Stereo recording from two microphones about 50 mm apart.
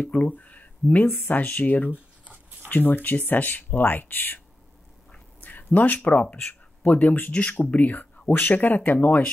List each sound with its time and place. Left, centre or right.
0.0 s speech: left
5.4 s a sound: left
6.8 s speech: left